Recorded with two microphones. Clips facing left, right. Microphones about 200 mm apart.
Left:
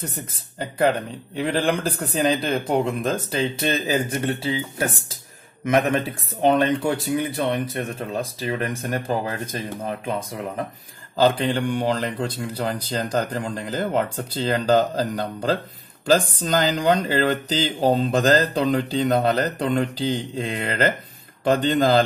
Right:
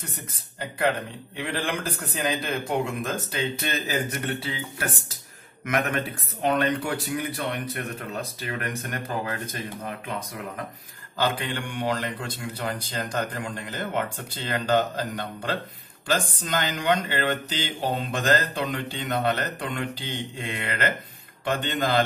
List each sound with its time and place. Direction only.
1.3 s speech: 35° left (ahead or behind)